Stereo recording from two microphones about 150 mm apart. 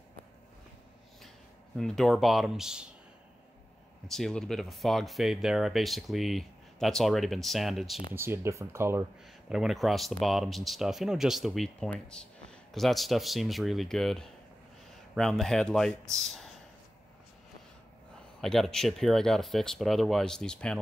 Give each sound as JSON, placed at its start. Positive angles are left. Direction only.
{"t": 1.8, "sound": "speech", "side_deg": 5}
{"t": 4.1, "sound": "speech", "side_deg": 5}
{"t": 8.1, "sound": "speech", "side_deg": -15}
{"t": 9.5, "sound": "speech", "side_deg": -5}
{"t": 18.4, "sound": "speech", "side_deg": 5}